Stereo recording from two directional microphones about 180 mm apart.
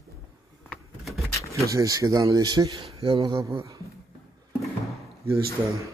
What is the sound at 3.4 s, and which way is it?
Speech, 15° right (ahead or behind).